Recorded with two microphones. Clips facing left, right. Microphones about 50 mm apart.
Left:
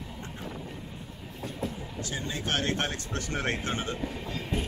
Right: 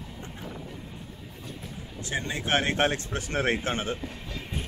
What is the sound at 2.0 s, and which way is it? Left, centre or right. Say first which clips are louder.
Speech: right 5 dB; right.